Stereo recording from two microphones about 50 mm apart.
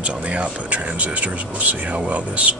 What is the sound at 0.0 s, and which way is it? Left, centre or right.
Speech, right.